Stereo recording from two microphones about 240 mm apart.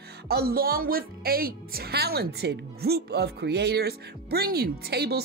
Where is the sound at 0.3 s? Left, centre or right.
Right.